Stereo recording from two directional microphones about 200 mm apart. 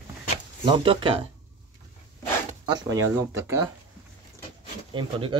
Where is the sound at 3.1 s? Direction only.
15° right (ahead or behind).